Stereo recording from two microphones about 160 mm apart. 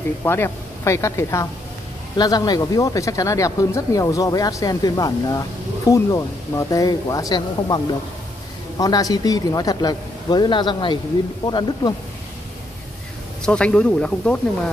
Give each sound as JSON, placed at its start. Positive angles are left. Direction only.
{"t": 0.2, "sound": "speech", "side_deg": 15}
{"t": 13.5, "sound": "speech", "side_deg": 5}